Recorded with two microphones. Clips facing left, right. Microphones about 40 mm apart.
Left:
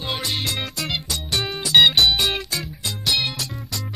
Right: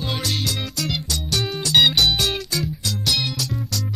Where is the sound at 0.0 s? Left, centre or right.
Centre.